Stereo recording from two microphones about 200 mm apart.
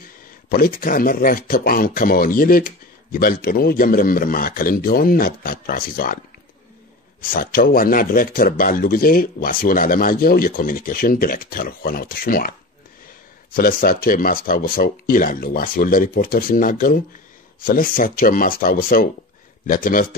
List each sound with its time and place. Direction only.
0.5 s speech: 45° left (ahead or behind)
7.2 s speech: 45° left (ahead or behind)
13.6 s speech: 45° left (ahead or behind)